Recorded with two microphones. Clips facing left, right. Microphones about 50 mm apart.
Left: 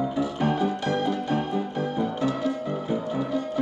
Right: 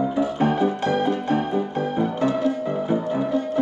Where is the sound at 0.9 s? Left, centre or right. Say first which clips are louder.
Right 4 dB; right.